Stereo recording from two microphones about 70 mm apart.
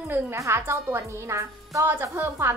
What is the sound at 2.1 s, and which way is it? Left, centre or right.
Speech, right.